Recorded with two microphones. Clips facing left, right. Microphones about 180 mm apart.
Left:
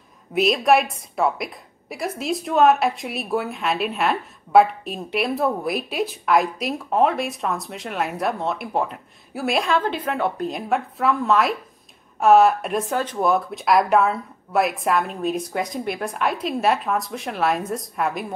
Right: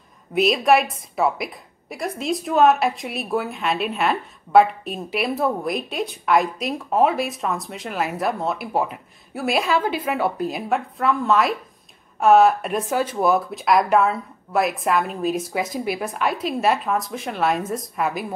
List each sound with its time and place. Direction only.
0.3 s a woman's voice: centre (ahead or behind)